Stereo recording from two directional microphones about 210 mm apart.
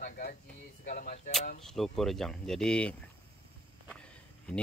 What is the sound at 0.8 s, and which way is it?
Cap gun, 40° left (ahead or behind).